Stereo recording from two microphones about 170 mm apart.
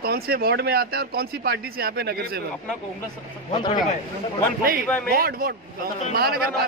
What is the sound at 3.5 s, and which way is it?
Speech, 25° left (ahead or behind).